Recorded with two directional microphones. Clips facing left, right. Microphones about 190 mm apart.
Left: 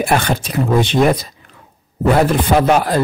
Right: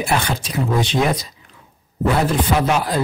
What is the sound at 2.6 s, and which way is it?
Speech, 55° left (ahead or behind).